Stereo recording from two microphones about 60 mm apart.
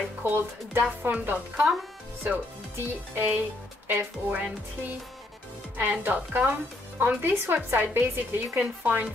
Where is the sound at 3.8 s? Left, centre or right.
Right.